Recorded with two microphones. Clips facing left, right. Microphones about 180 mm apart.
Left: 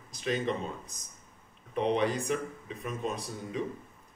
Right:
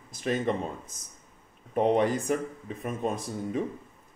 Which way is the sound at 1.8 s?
50° right (ahead or behind).